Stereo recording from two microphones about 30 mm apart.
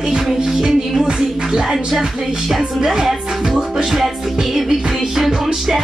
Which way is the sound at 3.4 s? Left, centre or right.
Right.